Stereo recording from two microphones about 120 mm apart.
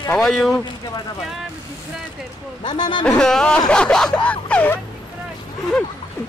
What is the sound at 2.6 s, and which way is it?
Speech, 40° left (ahead or behind).